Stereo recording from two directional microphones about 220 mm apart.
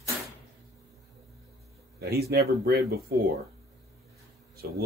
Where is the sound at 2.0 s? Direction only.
45° right (ahead or behind).